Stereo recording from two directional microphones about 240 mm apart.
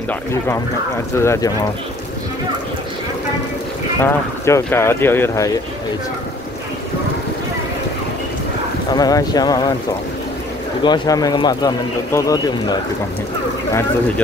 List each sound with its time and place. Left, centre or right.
0.1 s speech: centre
4.0 s speech: centre
8.9 s speech: centre
10.8 s speech: centre